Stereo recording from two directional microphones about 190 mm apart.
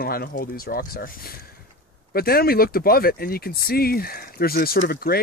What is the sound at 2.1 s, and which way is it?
Speech, 55° left (ahead or behind).